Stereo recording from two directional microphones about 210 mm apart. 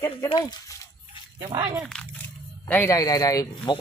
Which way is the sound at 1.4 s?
20° right (ahead or behind).